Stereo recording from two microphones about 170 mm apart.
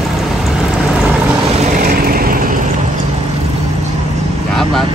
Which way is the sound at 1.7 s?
55° right (ahead or behind).